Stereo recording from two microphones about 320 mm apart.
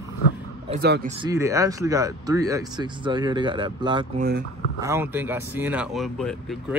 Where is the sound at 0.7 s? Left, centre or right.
Right.